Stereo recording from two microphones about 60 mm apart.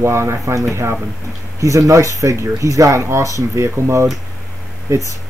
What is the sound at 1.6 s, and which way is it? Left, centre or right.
Speech, right.